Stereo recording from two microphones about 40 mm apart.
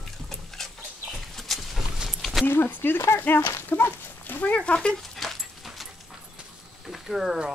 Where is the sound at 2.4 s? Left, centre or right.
Left.